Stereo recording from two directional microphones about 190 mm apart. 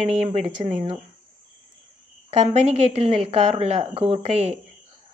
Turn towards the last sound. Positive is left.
turn(degrees=-35)  # may be behind; listen again after turning